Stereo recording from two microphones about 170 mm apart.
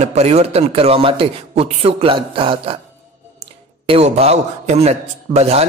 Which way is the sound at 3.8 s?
35° right (ahead or behind).